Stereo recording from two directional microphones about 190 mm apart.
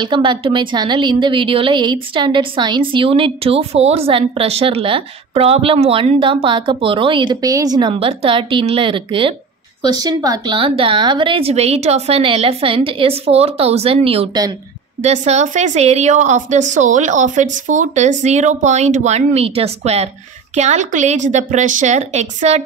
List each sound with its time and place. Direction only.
0.0 s a woman's voice: 25° right (ahead or behind)